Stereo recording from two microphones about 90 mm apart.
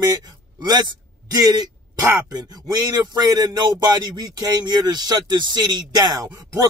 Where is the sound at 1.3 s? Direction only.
45° right (ahead or behind).